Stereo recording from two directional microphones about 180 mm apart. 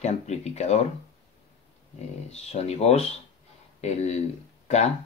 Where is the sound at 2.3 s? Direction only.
35° left (ahead or behind).